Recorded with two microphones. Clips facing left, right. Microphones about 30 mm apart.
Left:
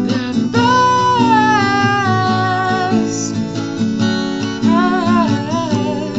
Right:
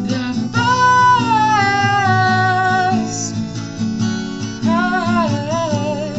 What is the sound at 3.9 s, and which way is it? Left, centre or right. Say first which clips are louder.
Music: left 4 dB; left.